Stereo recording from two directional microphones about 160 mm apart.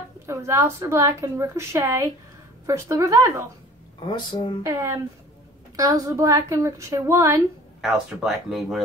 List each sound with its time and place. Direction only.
0.3 s a woman's voice: 20° right (ahead or behind)
4.1 s speech: 25° left (ahead or behind)
4.6 s a woman's voice: 20° right (ahead or behind)
7.8 s speech: centre (ahead or behind)